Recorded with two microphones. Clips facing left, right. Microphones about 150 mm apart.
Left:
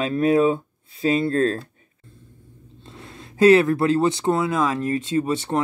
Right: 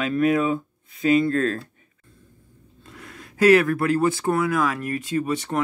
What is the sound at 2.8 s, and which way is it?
Speech, 25° left (ahead or behind).